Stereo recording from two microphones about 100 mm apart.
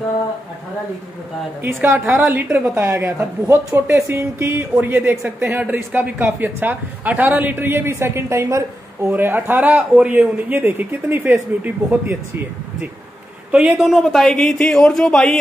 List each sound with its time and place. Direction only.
1.6 s a man's voice: 25° right (ahead or behind)
13.5 s a man's voice: 5° right (ahead or behind)